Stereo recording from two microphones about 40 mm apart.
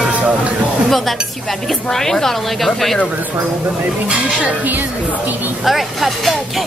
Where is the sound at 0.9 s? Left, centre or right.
Centre.